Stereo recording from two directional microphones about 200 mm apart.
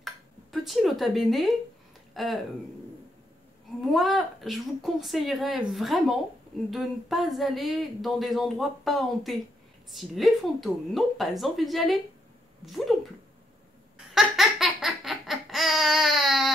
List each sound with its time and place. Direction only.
0.0 s dishes: centre (ahead or behind)
2.1 s speech: centre (ahead or behind)
3.9 s speech: centre (ahead or behind)
13.9 s baby laughter: centre (ahead or behind)